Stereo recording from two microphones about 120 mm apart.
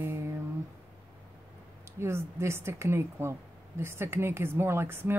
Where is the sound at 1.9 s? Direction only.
20° right (ahead or behind).